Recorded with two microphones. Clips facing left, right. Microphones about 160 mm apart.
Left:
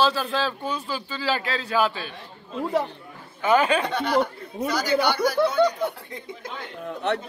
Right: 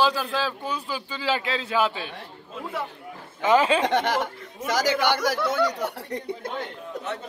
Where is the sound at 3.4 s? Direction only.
25° right (ahead or behind).